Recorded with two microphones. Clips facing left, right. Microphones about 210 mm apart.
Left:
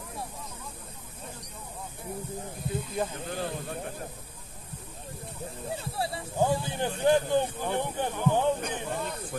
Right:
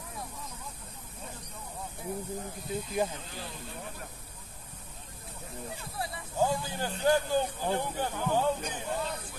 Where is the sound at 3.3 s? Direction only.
55° left (ahead or behind).